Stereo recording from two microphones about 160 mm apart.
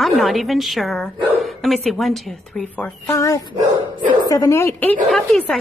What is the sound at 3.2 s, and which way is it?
A woman's voice, 20° left (ahead or behind).